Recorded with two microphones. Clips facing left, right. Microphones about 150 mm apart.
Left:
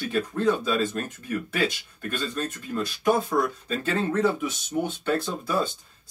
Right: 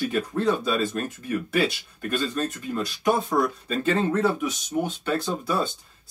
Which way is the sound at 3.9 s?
5° right (ahead or behind).